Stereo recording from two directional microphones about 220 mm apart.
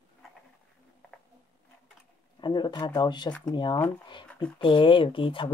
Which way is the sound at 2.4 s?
20° left (ahead or behind).